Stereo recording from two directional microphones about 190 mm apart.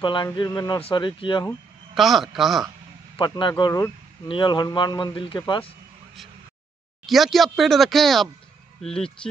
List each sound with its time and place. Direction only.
0.0 s a man's voice: 25° left (ahead or behind)
2.0 s speech: centre (ahead or behind)
3.2 s a man's voice: 25° left (ahead or behind)
7.1 s speech: centre (ahead or behind)